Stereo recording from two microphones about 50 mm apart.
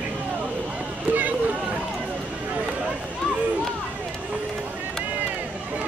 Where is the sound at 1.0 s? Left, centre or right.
Right.